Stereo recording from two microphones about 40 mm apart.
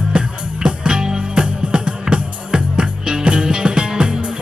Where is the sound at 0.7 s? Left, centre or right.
Right.